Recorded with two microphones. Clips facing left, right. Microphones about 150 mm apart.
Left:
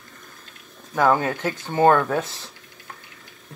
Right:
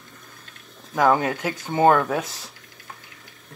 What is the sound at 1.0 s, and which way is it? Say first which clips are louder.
Speech: even; 10° right (ahead or behind).